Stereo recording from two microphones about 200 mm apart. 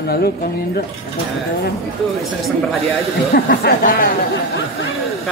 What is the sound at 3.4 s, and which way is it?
Speech, 50° left (ahead or behind).